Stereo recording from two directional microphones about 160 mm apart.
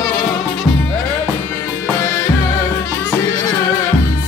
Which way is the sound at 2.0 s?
15° left (ahead or behind).